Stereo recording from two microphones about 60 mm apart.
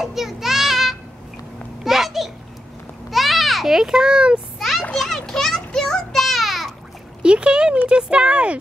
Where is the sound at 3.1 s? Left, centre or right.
Centre.